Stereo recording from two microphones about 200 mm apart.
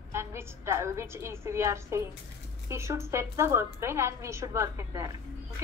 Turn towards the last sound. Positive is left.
turn(degrees=-15)  # may be behind; listen again after turning